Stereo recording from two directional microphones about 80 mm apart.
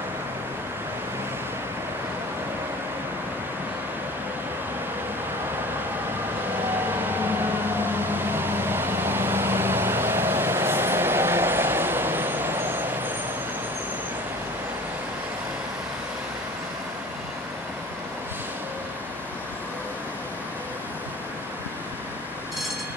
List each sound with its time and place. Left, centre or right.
7.0 s vehicle: right